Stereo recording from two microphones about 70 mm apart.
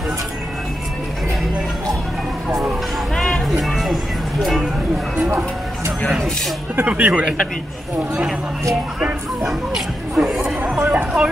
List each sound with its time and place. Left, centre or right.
3.2 s music: centre
3.4 s music: centre
6.8 s speech: centre
9.5 s chatter: centre
10.7 s a sound: centre